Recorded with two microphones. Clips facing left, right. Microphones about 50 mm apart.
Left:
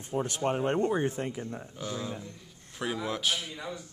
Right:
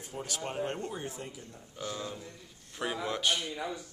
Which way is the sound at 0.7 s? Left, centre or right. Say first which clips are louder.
Left 10 dB; left.